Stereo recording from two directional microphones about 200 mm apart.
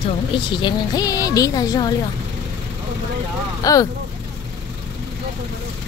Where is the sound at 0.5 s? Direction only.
20° left (ahead or behind).